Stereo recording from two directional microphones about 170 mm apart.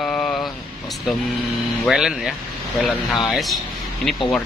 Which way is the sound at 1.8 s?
5° right (ahead or behind).